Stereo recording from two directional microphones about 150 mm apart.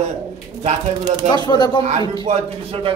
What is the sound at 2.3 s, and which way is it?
Speech, 40° right (ahead or behind).